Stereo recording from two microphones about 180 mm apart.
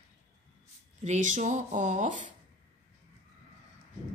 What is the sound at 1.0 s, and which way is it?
Speech, 40° right (ahead or behind).